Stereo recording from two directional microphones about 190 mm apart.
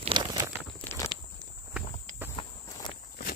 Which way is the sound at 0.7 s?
15° left (ahead or behind).